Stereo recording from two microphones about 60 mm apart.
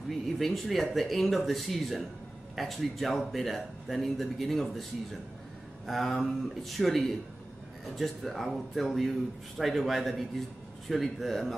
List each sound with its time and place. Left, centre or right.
0.1 s speech: centre
5.9 s speech: centre